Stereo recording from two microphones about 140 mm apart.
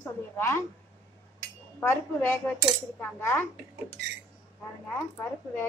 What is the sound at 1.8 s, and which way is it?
A woman's voice, 15° left (ahead or behind).